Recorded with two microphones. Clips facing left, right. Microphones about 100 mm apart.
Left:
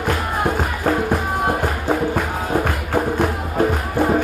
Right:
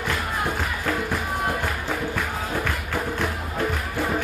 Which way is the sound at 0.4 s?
40° left (ahead or behind).